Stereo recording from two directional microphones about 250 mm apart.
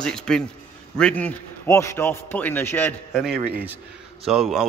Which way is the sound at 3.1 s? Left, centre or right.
Centre.